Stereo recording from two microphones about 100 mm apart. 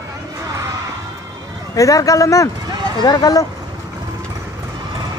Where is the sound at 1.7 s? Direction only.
35° left (ahead or behind).